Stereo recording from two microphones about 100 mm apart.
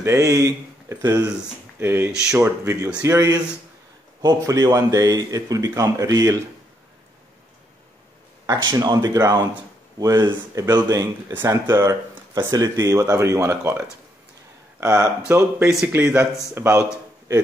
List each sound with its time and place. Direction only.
0.0 s speech: 30° right (ahead or behind)
1.8 s speech: 25° right (ahead or behind)
8.5 s speech: 40° right (ahead or behind); by 16.8 s 25° right (ahead or behind)